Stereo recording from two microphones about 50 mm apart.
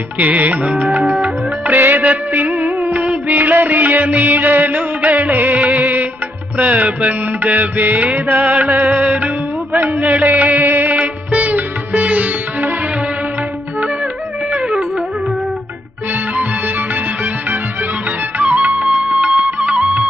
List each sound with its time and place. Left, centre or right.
0.2 s music: right
1.8 s music: right
18.8 s music: centre